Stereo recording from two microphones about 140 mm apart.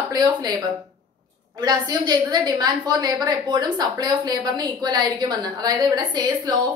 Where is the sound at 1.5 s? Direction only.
30° right (ahead or behind).